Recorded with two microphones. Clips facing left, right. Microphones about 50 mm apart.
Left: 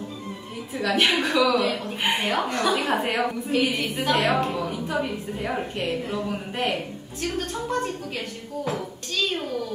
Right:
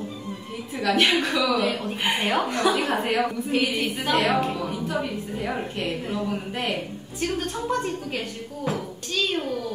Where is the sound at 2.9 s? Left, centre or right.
Centre.